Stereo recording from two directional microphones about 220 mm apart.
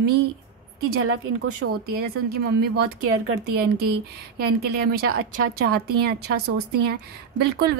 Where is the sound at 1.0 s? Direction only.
80° right.